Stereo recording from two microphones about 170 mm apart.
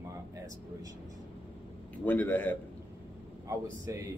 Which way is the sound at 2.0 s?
10° left (ahead or behind).